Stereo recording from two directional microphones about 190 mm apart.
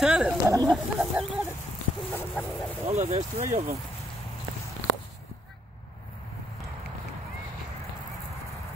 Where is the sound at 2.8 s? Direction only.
35° right (ahead or behind).